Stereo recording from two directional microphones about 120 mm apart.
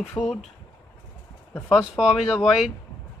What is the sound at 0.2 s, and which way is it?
Speech, 20° left (ahead or behind).